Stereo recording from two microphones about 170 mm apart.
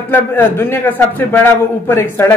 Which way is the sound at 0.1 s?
10° left (ahead or behind).